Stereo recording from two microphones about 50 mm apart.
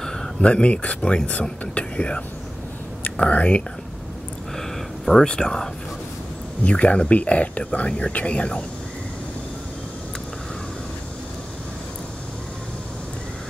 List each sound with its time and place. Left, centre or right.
0.0 s speech: centre
4.6 s a sound: centre
5.3 s speech: centre
6.6 s speech: left